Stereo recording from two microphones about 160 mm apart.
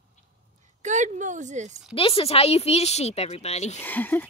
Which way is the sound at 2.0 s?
35° left (ahead or behind).